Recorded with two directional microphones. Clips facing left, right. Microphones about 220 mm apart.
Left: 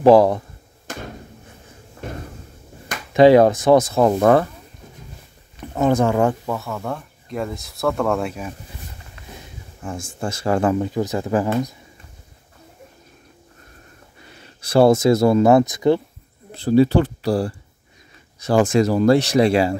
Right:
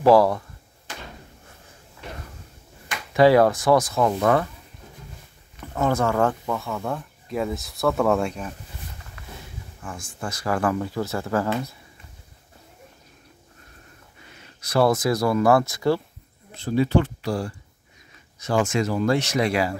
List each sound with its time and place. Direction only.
0.0 s speech: 20° left (ahead or behind)
0.9 s slam: 45° left (ahead or behind)
2.0 s cupboard open or close: 45° left (ahead or behind)
3.2 s speech: 20° left (ahead or behind)
4.1 s speech: 40° left (ahead or behind)
5.6 s speech: 20° left (ahead or behind)
6.5 s speech: centre (ahead or behind)
9.8 s speech: 25° left (ahead or behind)
14.3 s speech: 30° left (ahead or behind)
16.5 s speech: 35° left (ahead or behind)